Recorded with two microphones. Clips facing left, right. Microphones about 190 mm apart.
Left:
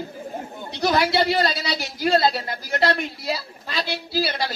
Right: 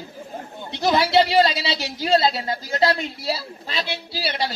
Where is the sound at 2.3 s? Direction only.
20° right (ahead or behind).